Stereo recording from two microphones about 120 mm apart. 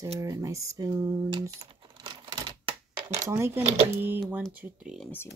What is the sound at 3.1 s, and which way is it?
Typing, 20° right (ahead or behind).